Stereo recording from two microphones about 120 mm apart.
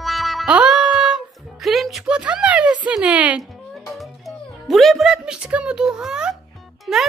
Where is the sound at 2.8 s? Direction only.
10° right (ahead or behind).